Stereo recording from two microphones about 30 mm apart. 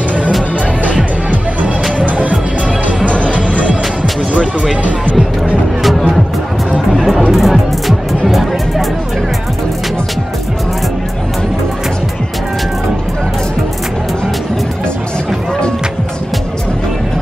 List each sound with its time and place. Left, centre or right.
1.6 s music: right
6.9 s music: centre
7.2 s music: centre